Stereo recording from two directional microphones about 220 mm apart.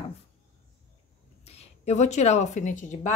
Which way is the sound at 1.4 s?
30° left (ahead or behind).